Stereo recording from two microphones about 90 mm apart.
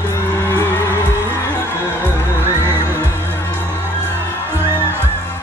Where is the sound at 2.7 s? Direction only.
25° right (ahead or behind).